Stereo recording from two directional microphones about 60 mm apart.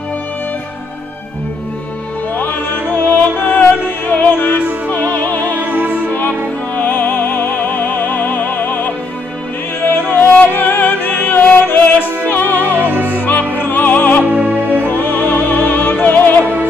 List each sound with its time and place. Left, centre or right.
2.3 s music: left
5.6 s music: right
5.9 s music: left
14.3 s music: right
14.9 s music: left